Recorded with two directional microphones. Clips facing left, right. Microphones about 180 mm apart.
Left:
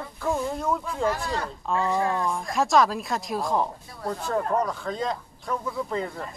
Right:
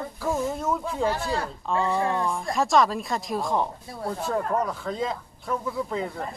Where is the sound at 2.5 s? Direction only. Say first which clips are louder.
Even; centre (ahead or behind).